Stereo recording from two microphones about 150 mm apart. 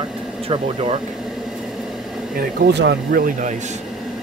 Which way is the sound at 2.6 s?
85° right.